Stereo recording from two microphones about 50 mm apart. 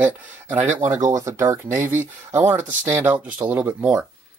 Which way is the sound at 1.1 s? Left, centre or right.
Right.